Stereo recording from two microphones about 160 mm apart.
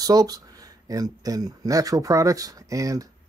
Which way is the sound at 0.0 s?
25° right (ahead or behind).